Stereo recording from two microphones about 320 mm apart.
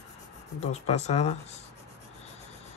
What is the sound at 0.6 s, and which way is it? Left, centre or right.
Speech, centre.